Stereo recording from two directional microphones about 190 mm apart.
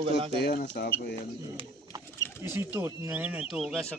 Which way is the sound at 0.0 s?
30° right (ahead or behind).